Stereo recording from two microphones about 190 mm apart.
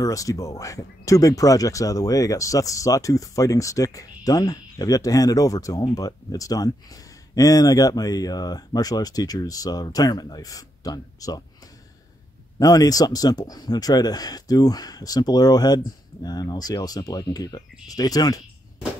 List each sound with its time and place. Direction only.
0.0 s speech: 15° left (ahead or behind)
12.5 s speech: 20° left (ahead or behind)